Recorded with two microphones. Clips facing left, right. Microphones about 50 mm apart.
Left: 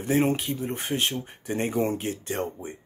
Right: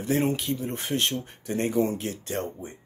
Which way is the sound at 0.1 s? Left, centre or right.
Centre.